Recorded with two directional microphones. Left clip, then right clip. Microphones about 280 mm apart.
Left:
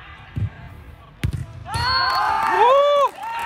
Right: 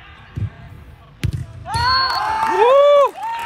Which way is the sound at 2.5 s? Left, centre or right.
Centre.